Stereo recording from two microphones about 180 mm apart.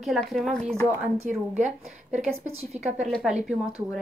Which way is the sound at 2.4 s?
35° right (ahead or behind).